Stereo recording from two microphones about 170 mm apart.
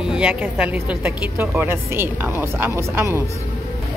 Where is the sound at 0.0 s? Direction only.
5° right (ahead or behind).